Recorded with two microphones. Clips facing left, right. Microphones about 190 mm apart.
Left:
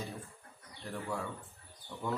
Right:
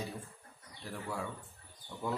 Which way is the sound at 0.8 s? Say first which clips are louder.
Left 2 dB; 5° right (ahead or behind).